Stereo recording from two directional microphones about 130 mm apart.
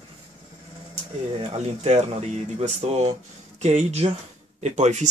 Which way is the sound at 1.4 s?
55° right (ahead or behind).